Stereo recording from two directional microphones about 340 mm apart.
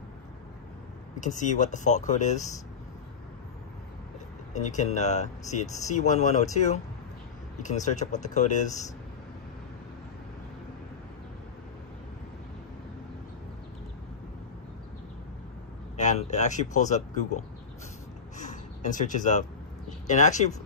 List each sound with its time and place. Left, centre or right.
1.2 s speech: left
4.6 s speech: left
16.0 s a sound: left
16.7 s speech: left
18.4 s a sound: left
20.1 s speech: left